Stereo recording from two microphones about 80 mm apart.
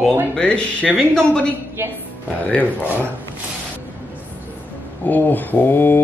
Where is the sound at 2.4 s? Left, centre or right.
Left.